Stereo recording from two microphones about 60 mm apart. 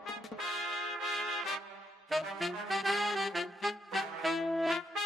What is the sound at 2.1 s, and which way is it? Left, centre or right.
Saxophone, centre.